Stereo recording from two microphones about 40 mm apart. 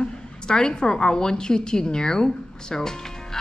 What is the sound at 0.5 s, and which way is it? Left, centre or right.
A woman's voice, centre.